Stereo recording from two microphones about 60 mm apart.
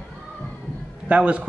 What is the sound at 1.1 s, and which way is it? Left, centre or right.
Speech, right.